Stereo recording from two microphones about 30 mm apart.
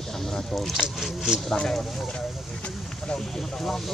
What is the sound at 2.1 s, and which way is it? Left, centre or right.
Speech, left.